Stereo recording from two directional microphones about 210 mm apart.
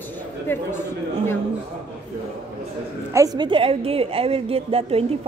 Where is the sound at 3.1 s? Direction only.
20° right (ahead or behind).